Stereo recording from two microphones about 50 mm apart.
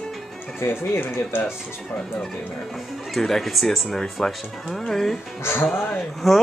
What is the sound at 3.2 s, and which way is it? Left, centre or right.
Speech, centre.